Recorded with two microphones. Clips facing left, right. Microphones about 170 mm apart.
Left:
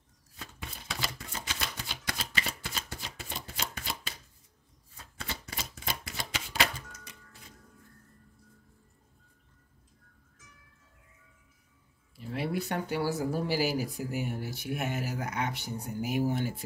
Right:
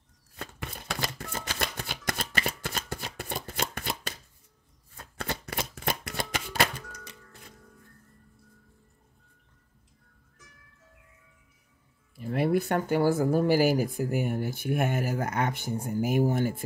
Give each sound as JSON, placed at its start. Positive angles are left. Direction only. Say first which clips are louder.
{"t": 0.4, "sound": "a sound", "louder": "right 6 dB", "side_deg": -60}
{"t": 4.9, "sound": "shuffling cards", "louder": "right 7 dB", "side_deg": -55}
{"t": 12.2, "sound": "speech", "louder": "right 7 dB", "side_deg": -55}